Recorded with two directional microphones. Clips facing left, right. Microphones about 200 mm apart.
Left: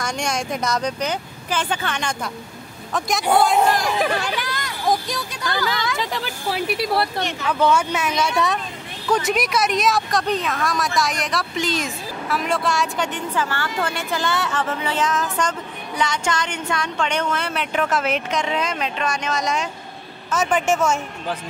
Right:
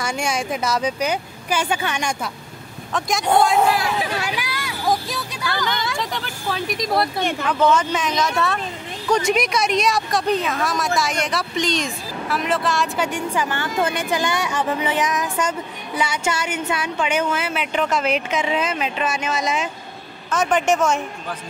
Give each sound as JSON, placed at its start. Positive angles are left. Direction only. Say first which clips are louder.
{"t": 0.0, "sound": "speech", "louder": "right 1 dB", "side_deg": -5}
{"t": 2.9, "sound": "speech", "louder": "even", "side_deg": 0}
{"t": 9.1, "sound": "speech", "louder": "right 1 dB", "side_deg": 0}